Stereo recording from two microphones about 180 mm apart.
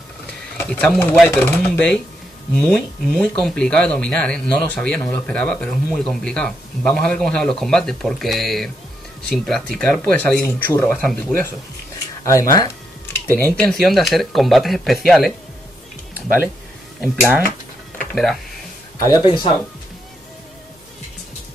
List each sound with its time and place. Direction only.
0.6 s speech: 5° left (ahead or behind)
13.1 s speech: 10° left (ahead or behind)
17.0 s speech: centre (ahead or behind)
17.9 s a sound: centre (ahead or behind)
18.9 s speech: 20° left (ahead or behind)